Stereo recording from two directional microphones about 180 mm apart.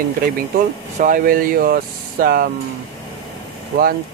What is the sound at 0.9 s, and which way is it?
Speech, 50° right (ahead or behind).